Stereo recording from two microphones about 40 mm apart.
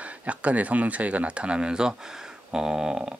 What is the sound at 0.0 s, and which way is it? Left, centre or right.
Speech, right.